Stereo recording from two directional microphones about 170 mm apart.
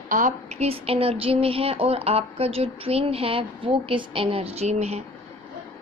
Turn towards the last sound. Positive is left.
turn(degrees=-40)  # may be behind; listen again after turning